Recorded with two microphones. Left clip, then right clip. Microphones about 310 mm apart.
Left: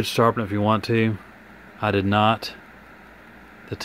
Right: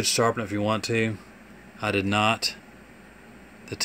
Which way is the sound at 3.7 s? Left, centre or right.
Centre.